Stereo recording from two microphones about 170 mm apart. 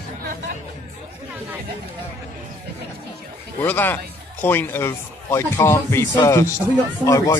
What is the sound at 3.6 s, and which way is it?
A man's voice, 10° left (ahead or behind).